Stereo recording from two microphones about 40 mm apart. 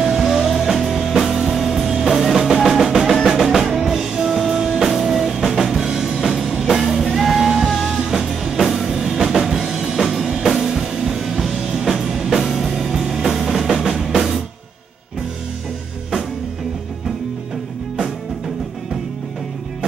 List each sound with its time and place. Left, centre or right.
0.0 s music: centre
5.8 s music: centre
9.9 s drum: centre
10.6 s music: centre